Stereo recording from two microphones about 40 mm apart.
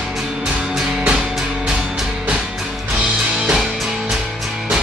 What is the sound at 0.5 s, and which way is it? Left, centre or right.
Music, right.